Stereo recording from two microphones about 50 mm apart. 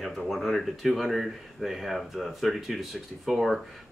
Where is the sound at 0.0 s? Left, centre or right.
Centre.